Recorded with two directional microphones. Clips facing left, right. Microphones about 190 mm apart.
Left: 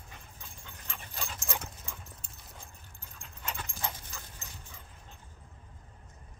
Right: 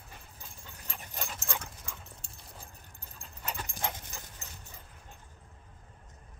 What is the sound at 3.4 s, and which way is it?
Dog, 10° right (ahead or behind).